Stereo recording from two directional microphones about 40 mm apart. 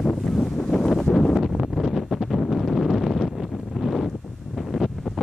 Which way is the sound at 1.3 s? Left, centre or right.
Centre.